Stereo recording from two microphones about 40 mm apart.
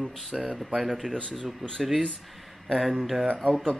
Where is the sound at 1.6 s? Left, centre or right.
Centre.